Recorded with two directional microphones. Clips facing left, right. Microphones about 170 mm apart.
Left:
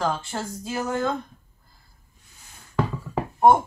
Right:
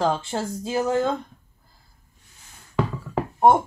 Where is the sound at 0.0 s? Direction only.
25° right (ahead or behind).